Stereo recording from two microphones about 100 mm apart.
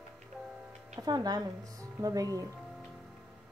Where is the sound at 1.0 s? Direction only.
40° right (ahead or behind).